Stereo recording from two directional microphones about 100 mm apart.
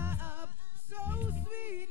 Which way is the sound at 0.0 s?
25° right (ahead or behind).